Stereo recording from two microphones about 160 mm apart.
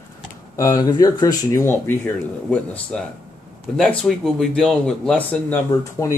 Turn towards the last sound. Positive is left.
turn(degrees=15)  # may be behind; listen again after turning